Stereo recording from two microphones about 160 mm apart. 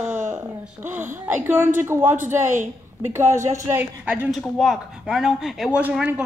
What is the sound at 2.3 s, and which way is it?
Speech, 50° right (ahead or behind).